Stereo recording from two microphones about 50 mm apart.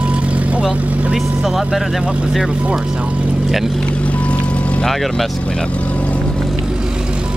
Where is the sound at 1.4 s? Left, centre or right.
Centre.